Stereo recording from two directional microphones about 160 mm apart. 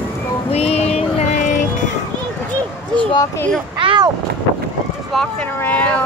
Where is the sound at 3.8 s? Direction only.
35° right (ahead or behind).